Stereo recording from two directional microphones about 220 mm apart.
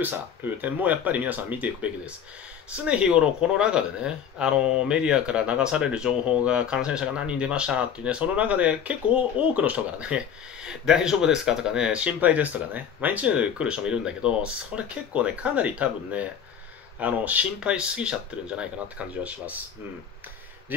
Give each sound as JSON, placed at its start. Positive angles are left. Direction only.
{"t": 0.0, "sound": "speech", "side_deg": -10}